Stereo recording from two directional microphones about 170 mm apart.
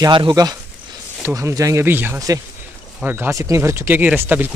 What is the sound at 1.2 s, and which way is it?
Speech, 15° right (ahead or behind).